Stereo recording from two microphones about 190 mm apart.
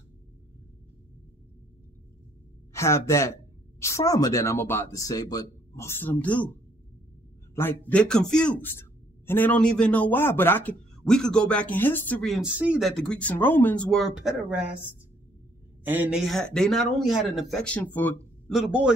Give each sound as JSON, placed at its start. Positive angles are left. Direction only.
{"t": 2.7, "sound": "a man's voice", "side_deg": 15}
{"t": 7.5, "sound": "a man's voice", "side_deg": 10}
{"t": 15.8, "sound": "speech", "side_deg": -10}
{"t": 18.5, "sound": "speech", "side_deg": -5}